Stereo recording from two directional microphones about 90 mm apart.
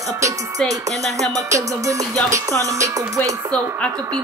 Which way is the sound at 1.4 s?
35° right (ahead or behind).